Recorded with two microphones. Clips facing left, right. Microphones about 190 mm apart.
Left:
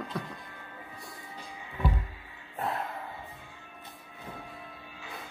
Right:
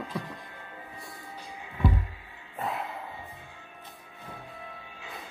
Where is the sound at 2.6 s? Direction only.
Centre (ahead or behind).